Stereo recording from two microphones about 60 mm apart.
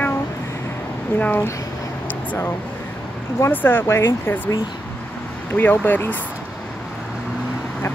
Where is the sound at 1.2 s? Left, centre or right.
Left.